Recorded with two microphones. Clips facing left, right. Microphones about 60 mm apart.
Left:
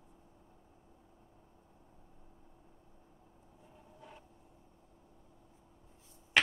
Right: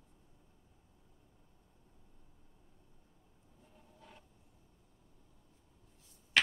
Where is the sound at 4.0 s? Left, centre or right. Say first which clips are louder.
Left 4 dB; centre.